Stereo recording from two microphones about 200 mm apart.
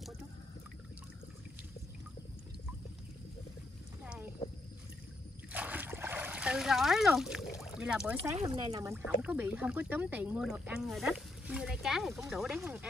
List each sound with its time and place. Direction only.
4.0 s a sound: 5° right (ahead or behind)
5.5 s splash: 10° right (ahead or behind)
7.7 s speech: 5° right (ahead or behind)
8.4 s speech: 30° right (ahead or behind)
8.8 s speech: 10° right (ahead or behind)